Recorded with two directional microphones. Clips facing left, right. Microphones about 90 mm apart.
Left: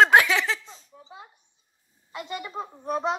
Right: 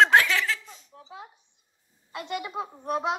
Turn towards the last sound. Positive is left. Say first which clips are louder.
# left 1 dB
turn(degrees=-5)  # may be behind; listen again after turning